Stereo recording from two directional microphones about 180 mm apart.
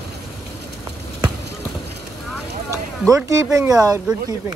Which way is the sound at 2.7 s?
20° right (ahead or behind).